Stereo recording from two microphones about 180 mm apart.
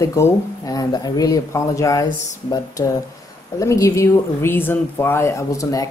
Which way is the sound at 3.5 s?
15° left (ahead or behind).